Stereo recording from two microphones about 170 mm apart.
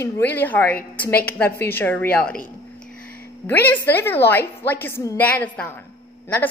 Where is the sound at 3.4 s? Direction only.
10° left (ahead or behind).